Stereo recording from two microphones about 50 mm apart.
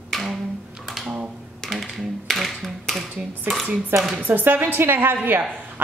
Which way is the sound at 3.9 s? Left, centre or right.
Centre.